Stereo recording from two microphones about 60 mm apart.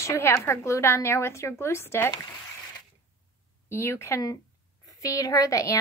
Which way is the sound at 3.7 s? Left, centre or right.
Left.